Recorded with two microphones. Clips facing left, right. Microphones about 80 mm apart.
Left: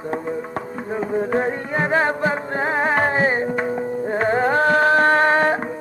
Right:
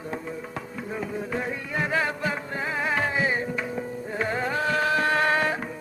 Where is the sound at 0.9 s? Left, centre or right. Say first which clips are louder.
Left 10 dB; left.